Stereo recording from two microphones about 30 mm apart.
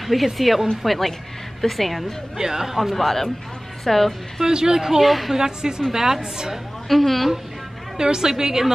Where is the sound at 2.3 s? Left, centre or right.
Centre.